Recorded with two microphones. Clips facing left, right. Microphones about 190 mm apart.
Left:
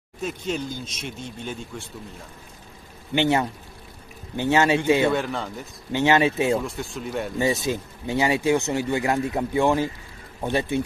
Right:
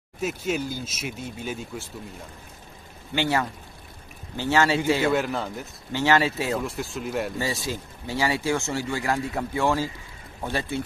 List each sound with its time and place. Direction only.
0.2 s speech: 5° right (ahead or behind)
3.2 s speech: 20° left (ahead or behind)
5.0 s speech: centre (ahead or behind)
5.9 s speech: 20° left (ahead or behind)
6.6 s speech: centre (ahead or behind)
7.3 s speech: 20° left (ahead or behind)